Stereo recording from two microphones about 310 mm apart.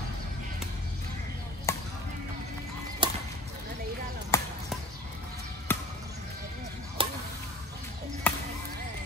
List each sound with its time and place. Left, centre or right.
1.7 s basketball bounce: centre
3.0 s chop: centre
4.3 s basketball bounce: centre
5.7 s basketball bounce: centre
7.0 s a sound: centre
8.3 s music: centre